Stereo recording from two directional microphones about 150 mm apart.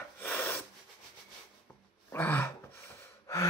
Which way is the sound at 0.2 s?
15° left (ahead or behind).